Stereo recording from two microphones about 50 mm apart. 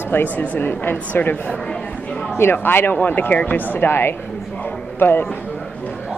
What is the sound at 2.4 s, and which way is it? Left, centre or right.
A woman's voice, left.